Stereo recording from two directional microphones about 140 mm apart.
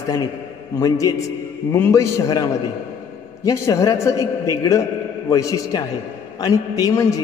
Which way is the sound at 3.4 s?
20° left (ahead or behind).